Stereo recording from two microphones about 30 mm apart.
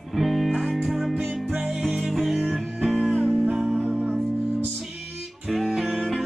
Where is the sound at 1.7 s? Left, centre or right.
Right.